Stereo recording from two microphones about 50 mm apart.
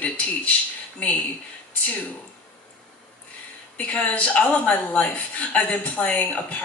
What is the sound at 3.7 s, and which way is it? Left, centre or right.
A woman's voice, left.